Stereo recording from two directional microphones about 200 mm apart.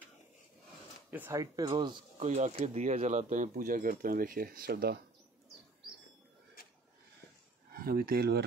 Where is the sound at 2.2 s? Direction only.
35° right (ahead or behind); by 5.0 s 50° right (ahead or behind).